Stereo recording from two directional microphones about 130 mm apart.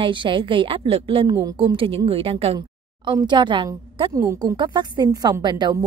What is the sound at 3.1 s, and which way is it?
A woman's voice, 35° right (ahead or behind).